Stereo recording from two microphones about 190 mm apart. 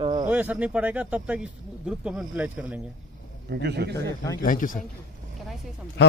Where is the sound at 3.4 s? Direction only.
60° right (ahead or behind).